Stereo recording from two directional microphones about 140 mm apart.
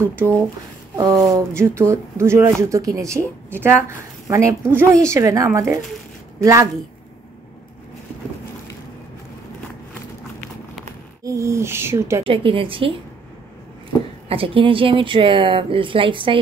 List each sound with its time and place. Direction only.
0.9 s speech: 25° right (ahead or behind)
11.2 s speech: 20° right (ahead or behind)
12.3 s speech: 40° right (ahead or behind)
14.3 s speech: 40° right (ahead or behind)